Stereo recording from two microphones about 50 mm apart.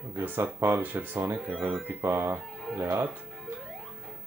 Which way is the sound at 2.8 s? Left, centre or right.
Right.